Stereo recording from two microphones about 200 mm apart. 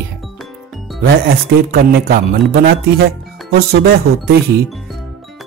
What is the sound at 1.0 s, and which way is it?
Speech, 50° right (ahead or behind).